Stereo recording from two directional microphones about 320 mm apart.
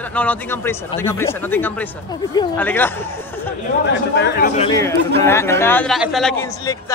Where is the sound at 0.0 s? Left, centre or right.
Centre.